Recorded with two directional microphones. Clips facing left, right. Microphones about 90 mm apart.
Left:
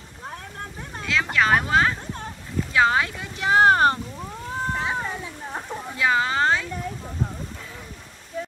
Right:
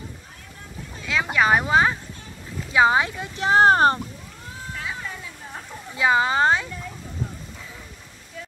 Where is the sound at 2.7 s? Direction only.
15° right (ahead or behind).